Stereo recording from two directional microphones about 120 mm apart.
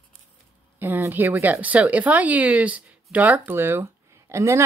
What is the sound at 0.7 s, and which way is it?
Speech, 15° right (ahead or behind).